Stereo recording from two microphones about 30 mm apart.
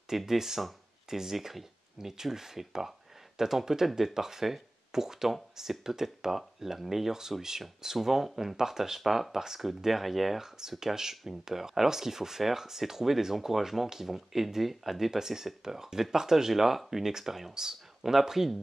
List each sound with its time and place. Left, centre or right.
0.2 s speech: centre
11.0 s speech: centre